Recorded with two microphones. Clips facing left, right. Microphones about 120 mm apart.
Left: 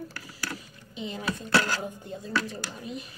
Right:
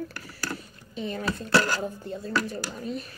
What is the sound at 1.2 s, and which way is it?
Speech, 35° right (ahead or behind).